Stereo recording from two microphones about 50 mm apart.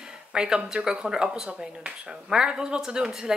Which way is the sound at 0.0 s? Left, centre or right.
Centre.